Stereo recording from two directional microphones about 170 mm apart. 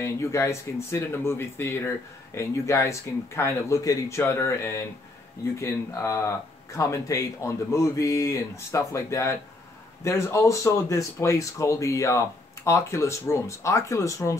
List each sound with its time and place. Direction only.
0.0 s speech: 15° left (ahead or behind)